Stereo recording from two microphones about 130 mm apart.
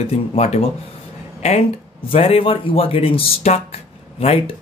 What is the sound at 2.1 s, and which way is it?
Speech, 45° left (ahead or behind).